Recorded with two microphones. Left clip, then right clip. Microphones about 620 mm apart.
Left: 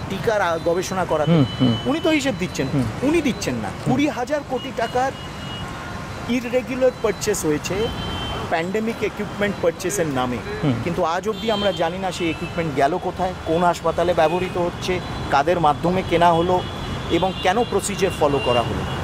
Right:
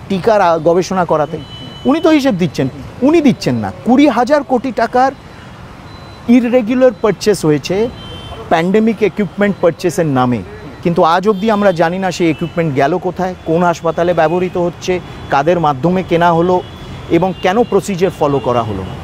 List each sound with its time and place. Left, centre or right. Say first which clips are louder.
0.2 s speech: right 10 dB; right
4.0 s speech: right 14 dB; right
6.3 s speech: right 11 dB; right